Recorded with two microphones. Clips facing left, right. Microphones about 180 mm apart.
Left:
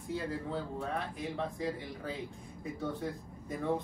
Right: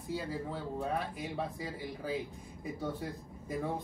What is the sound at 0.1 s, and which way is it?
Speech, 5° right (ahead or behind).